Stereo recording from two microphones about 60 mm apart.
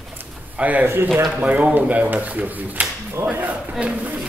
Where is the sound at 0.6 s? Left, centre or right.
Right.